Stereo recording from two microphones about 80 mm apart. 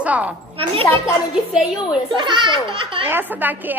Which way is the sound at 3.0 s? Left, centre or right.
Right.